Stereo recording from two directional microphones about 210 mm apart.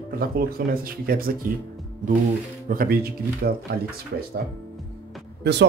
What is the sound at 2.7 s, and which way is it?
Speech, 45° right (ahead or behind).